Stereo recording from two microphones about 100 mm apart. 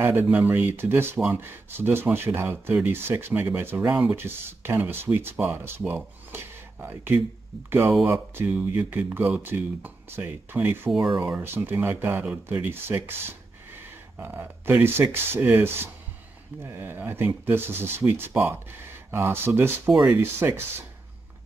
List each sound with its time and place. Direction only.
0.0 s speech: 20° right (ahead or behind)
8.5 s speech: 15° right (ahead or behind)
10.9 s speech: centre (ahead or behind)
11.1 s speech: 20° right (ahead or behind)